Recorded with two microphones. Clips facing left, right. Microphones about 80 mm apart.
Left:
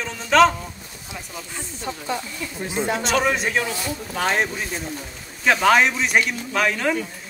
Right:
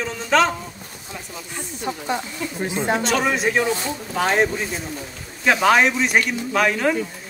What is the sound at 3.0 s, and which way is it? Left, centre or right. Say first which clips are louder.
A man's voice: right 1 dB; centre.